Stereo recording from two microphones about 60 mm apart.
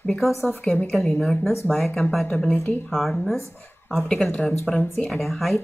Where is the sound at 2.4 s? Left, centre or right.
Centre.